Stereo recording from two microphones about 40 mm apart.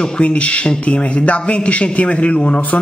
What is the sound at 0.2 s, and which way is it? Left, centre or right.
A man's voice, left.